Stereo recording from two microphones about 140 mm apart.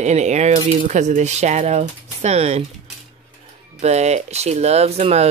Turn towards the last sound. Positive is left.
turn(degrees=-50)  # may be behind; listen again after turning